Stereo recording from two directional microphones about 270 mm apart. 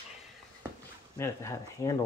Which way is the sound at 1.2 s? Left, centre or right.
Centre.